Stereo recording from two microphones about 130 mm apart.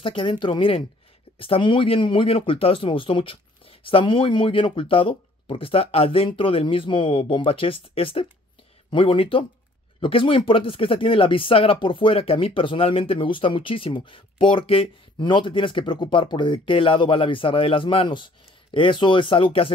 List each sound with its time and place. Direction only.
0.0 s speech: 40° left (ahead or behind)